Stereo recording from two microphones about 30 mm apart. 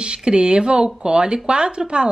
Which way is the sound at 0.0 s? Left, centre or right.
Right.